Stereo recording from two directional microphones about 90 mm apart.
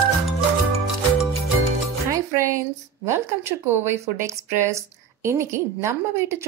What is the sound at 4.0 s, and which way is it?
A woman's voice, 35° right (ahead or behind).